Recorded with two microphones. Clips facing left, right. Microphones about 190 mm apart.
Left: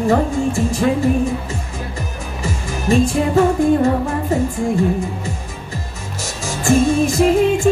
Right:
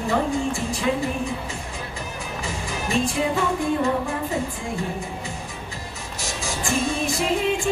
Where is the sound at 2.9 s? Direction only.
45° left (ahead or behind).